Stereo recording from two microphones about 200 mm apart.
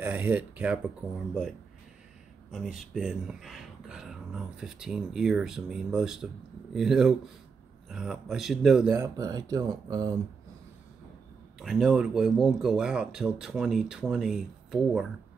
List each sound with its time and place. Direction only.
0.0 s speech: 10° right (ahead or behind)
2.5 s speech: centre (ahead or behind); by 10.1 s 20° right (ahead or behind)
11.6 s speech: centre (ahead or behind)